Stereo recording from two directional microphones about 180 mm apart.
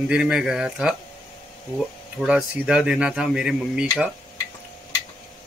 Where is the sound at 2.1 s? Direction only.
Centre (ahead or behind).